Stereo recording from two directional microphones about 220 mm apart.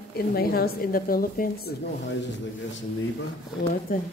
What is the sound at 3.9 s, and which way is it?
Speech, 40° left (ahead or behind).